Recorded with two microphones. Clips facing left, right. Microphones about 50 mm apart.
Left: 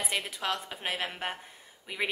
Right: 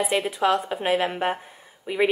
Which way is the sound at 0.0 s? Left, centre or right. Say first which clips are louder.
Right 11 dB; centre.